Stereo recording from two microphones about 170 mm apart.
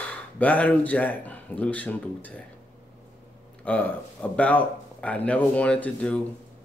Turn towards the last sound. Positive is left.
turn(degrees=5)  # may be behind; listen again after turning